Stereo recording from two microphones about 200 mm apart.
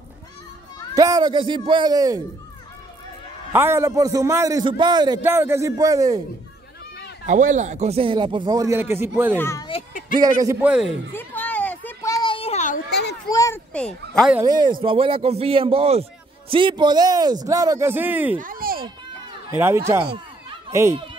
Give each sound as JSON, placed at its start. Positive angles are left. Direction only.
{"t": 0.9, "sound": "a man's voice", "side_deg": -20}
{"t": 3.5, "sound": "a man's voice", "side_deg": -10}
{"t": 7.2, "sound": "a man's voice", "side_deg": -40}
{"t": 9.4, "sound": "speech", "side_deg": 15}
{"t": 10.1, "sound": "a man's voice", "side_deg": -20}
{"t": 11.1, "sound": "a sound", "side_deg": 10}
{"t": 13.3, "sound": "speech", "side_deg": 15}
{"t": 13.7, "sound": "speech", "side_deg": 5}
{"t": 14.4, "sound": "a man's voice", "side_deg": -20}
{"t": 18.4, "sound": "a sound", "side_deg": -45}
{"t": 19.5, "sound": "a man's voice", "side_deg": -15}